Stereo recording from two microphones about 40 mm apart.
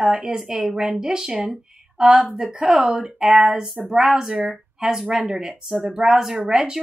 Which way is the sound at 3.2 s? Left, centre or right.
Centre.